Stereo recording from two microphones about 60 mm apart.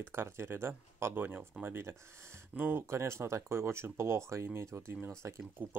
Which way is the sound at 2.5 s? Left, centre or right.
Right.